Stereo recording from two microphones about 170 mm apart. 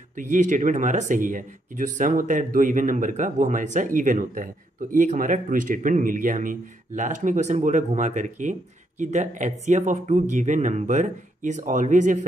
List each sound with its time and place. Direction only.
0.1 s speech: 50° right (ahead or behind)